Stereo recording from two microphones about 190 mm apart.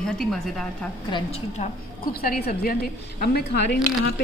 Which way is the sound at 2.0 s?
50° left (ahead or behind).